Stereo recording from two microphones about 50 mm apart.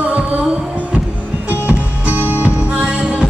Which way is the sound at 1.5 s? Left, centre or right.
Right.